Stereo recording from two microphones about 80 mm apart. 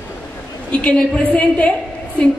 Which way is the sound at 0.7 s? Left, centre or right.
Centre.